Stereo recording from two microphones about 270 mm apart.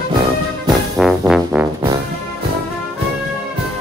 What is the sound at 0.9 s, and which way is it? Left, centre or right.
Trombone, centre.